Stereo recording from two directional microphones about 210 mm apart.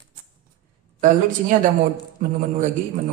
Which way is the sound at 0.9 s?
35° right (ahead or behind).